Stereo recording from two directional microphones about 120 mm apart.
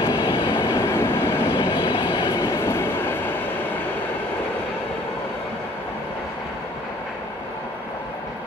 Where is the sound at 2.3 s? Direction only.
20° left (ahead or behind).